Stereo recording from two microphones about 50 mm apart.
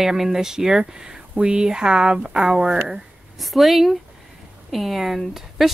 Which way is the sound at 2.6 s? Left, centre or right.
Right.